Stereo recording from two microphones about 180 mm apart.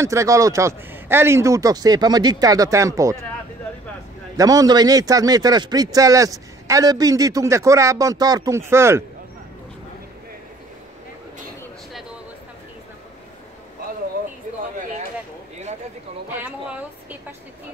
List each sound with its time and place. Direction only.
0.0 s a man's voice: 15° right (ahead or behind)
4.4 s a man's voice: 20° right (ahead or behind)
16.3 s a sound: 10° right (ahead or behind)